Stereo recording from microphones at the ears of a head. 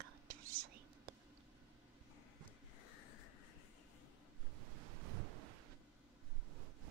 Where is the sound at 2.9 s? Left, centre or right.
Left.